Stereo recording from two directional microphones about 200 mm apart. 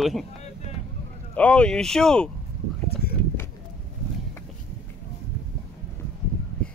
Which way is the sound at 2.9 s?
50° left (ahead or behind).